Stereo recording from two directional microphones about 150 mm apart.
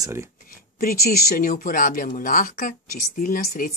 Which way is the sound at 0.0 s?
20° right (ahead or behind).